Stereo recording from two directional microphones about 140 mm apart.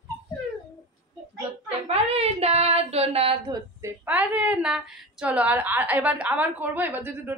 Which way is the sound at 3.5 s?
20° right (ahead or behind).